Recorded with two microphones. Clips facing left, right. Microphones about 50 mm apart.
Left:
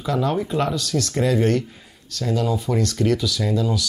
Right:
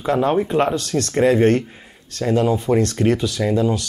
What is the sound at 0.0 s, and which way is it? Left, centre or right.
Speech, right.